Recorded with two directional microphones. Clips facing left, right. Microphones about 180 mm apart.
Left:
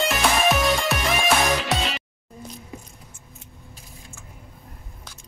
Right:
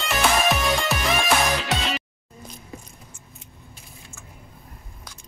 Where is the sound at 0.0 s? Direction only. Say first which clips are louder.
Left 1 dB; centre (ahead or behind).